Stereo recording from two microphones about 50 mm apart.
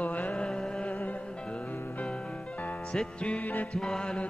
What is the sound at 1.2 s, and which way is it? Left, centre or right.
Music, centre.